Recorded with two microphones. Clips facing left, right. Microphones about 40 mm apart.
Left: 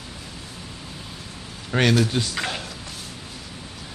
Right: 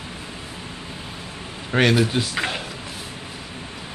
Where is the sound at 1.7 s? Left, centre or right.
Centre.